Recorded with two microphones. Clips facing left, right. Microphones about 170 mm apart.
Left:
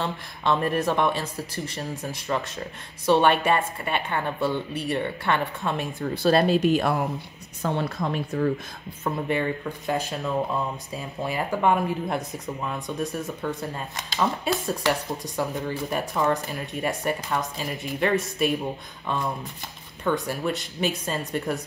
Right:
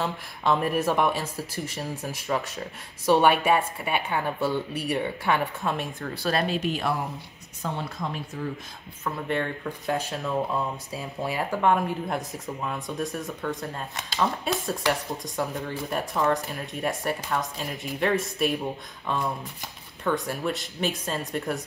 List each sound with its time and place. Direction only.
0.0 s speech: 5° right (ahead or behind)
5.9 s speech: 20° left (ahead or behind)
6.4 s speech: 40° left (ahead or behind)
7.6 s speech: 65° left (ahead or behind)
9.3 s speech: 5° left (ahead or behind)